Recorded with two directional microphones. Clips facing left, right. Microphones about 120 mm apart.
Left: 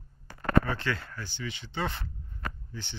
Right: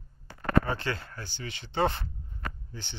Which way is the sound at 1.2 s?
50° right (ahead or behind).